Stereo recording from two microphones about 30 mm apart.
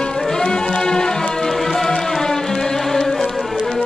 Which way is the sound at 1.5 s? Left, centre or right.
Centre.